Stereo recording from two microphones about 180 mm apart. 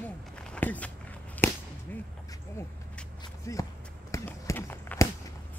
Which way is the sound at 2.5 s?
15° left (ahead or behind).